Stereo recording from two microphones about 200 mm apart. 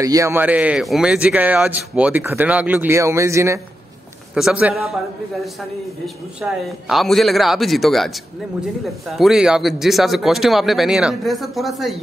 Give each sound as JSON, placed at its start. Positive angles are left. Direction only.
{"t": 0.0, "sound": "speech", "side_deg": -15}
{"t": 6.0, "sound": "speech", "side_deg": 0}